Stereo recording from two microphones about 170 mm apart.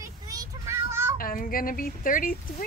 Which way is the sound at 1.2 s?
55° left (ahead or behind).